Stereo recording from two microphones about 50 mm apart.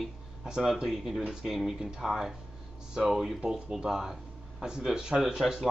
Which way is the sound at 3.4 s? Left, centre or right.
Centre.